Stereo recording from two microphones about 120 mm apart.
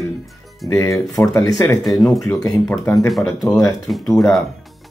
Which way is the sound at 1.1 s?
30° left (ahead or behind).